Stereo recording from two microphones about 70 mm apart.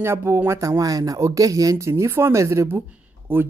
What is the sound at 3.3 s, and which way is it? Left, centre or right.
Speech, right.